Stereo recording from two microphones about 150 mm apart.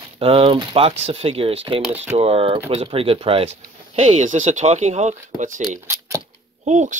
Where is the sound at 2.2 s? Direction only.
40° right (ahead or behind).